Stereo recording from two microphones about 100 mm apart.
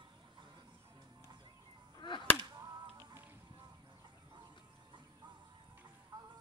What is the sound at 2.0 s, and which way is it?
Whip, 55° left (ahead or behind).